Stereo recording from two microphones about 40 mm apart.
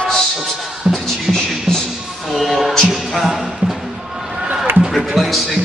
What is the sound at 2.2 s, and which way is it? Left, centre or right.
Music, centre.